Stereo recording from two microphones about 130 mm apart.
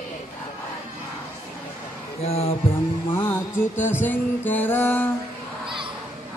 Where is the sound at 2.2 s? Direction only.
55° left (ahead or behind).